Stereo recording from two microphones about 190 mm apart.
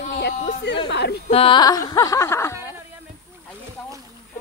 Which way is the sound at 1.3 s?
30° left (ahead or behind).